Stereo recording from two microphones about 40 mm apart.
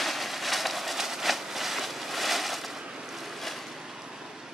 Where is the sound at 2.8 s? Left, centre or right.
Centre.